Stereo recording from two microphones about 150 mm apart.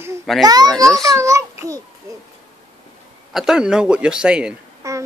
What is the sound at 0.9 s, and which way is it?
Speech, 20° right (ahead or behind).